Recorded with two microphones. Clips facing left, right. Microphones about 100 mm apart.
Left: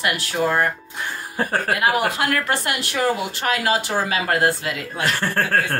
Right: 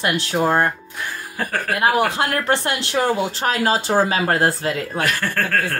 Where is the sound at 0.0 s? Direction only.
25° right (ahead or behind).